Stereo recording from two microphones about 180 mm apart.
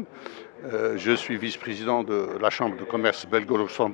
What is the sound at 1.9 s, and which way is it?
Speech, 25° left (ahead or behind).